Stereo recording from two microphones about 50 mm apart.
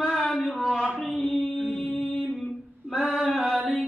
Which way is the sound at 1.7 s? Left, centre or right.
Left.